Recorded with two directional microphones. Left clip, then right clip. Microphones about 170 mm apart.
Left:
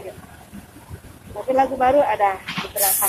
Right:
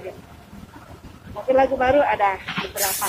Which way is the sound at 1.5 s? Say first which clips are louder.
Even; centre (ahead or behind).